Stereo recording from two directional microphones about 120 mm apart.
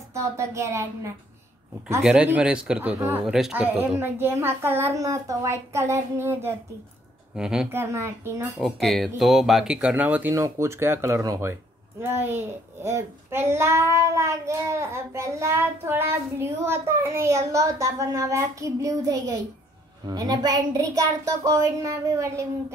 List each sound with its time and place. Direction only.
0.1 s a child's voice: 25° right (ahead or behind)
2.0 s speech: 10° right (ahead or behind)
3.6 s a child's voice: 20° right (ahead or behind)
7.3 s speech: 5° right (ahead or behind)
7.7 s a child's voice: 20° right (ahead or behind)
8.5 s speech: centre (ahead or behind)
10.3 s a child's voice: 25° right (ahead or behind)